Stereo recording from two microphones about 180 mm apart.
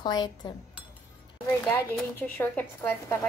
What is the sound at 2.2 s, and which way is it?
A woman's voice, 10° left (ahead or behind).